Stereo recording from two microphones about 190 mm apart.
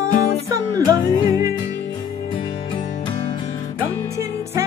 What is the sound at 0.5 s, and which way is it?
Music, 15° right (ahead or behind).